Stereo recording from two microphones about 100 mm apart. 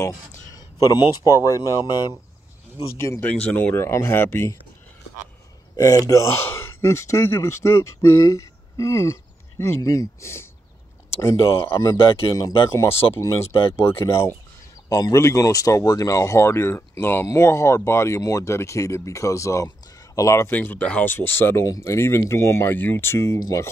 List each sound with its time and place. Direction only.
0.0 s a sound: 35° left (ahead or behind)
1.2 s speech: 30° left (ahead or behind)
3.0 s speech: 30° left (ahead or behind)
3.4 s speech: 15° left (ahead or behind)
3.7 s speech: 30° left (ahead or behind)
5.8 s speech: 40° left (ahead or behind)
6.3 s speech: 25° left (ahead or behind)
12.0 s speech: 60° left (ahead or behind)
12.7 s speech: 25° left (ahead or behind)
13.5 s speech: 60° left (ahead or behind)
13.7 s speech: 30° left (ahead or behind)